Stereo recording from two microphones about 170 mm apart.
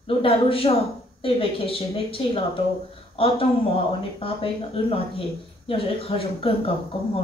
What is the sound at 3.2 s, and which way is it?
Speech, 30° left (ahead or behind).